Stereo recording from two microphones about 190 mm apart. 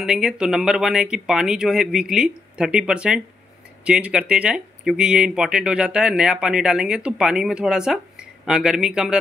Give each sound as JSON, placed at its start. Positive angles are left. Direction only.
{"t": 0.0, "sound": "speech", "side_deg": -5}